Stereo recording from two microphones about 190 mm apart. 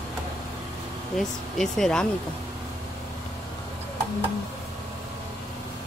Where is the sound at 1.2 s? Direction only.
Centre (ahead or behind).